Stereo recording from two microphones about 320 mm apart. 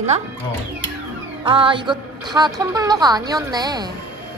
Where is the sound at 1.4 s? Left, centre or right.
Centre.